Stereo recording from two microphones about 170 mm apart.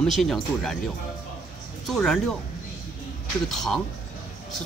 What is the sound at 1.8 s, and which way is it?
Speech, centre (ahead or behind).